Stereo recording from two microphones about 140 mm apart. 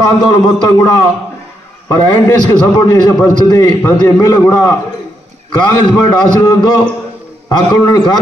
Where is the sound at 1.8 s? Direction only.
30° left (ahead or behind).